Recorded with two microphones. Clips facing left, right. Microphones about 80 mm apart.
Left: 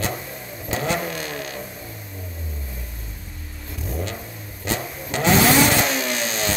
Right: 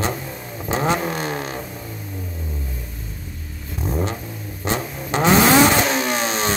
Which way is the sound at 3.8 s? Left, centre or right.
Right.